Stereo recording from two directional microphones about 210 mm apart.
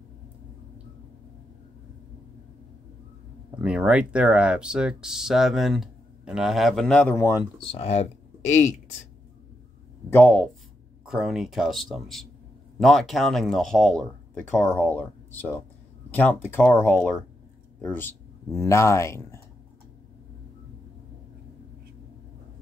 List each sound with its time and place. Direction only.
3.6 s speech: 5° right (ahead or behind); by 7.3 s 10° left (ahead or behind)
7.5 s speech: 25° left (ahead or behind)
10.0 s speech: 10° left (ahead or behind)